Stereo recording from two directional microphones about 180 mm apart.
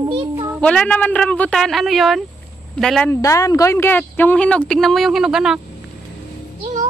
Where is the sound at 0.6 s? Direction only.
5° left (ahead or behind).